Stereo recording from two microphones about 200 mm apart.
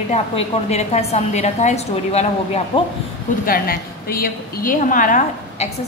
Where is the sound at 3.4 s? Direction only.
45° left (ahead or behind).